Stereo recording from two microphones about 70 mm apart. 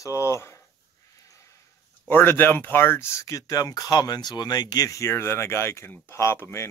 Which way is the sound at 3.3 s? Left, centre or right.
Left.